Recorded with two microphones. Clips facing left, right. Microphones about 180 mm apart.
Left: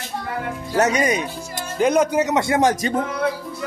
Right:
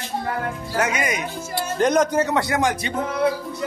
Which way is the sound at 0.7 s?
35° left (ahead or behind).